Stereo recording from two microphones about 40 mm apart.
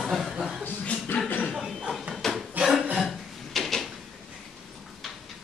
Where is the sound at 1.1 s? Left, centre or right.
Left.